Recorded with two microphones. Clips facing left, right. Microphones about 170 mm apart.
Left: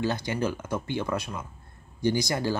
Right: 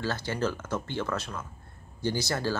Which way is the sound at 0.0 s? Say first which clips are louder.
Left 2 dB; 15° left (ahead or behind).